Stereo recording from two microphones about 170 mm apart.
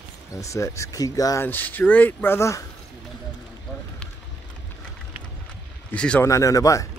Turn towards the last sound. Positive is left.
turn(degrees=20)  # may be behind; listen again after turning